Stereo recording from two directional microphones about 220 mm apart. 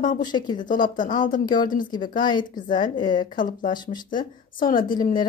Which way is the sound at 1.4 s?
20° left (ahead or behind).